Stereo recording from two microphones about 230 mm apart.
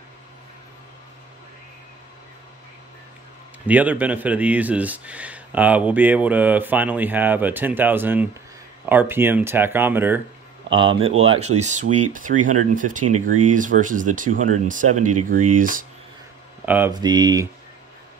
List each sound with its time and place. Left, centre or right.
3.6 s speech: centre
10.7 s speech: right
14.9 s speech: right
16.6 s speech: centre